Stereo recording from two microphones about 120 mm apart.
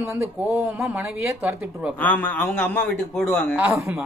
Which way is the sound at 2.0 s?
15° left (ahead or behind).